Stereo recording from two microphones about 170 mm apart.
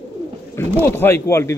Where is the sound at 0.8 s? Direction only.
15° left (ahead or behind).